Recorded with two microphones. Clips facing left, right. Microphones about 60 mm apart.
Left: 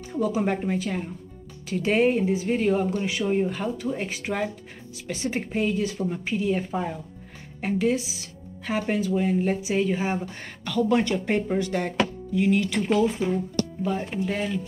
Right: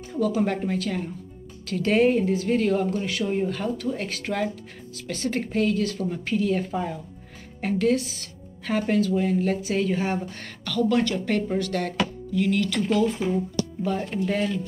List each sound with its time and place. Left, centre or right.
0.1 s a woman's voice: centre
12.8 s a woman's voice: centre